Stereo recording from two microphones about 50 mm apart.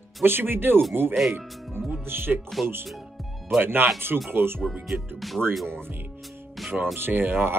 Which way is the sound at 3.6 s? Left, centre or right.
Right.